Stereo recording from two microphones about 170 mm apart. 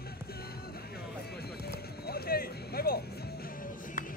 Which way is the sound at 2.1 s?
65° left (ahead or behind).